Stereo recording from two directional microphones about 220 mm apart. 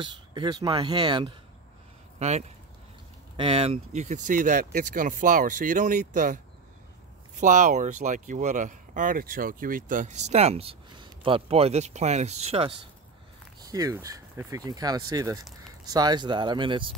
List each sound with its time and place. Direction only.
0.0 s speech: 20° right (ahead or behind)
2.1 s speech: 30° right (ahead or behind)